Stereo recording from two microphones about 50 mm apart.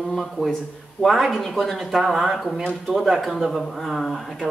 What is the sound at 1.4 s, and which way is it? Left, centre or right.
Speech, centre.